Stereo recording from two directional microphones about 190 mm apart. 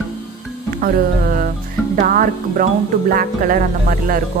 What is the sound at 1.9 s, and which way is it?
Music, 40° right (ahead or behind).